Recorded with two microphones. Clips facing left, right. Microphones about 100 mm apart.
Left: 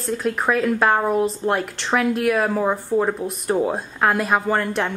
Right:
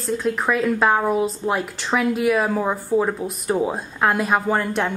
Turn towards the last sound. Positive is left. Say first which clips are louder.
# even
turn(degrees=0)  # may be behind; listen again after turning